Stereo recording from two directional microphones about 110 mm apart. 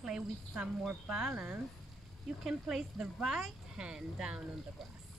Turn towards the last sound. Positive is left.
turn(degrees=-10)  # may be behind; listen again after turning